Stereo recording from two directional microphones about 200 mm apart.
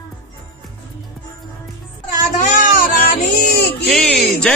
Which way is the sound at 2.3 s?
40° left (ahead or behind).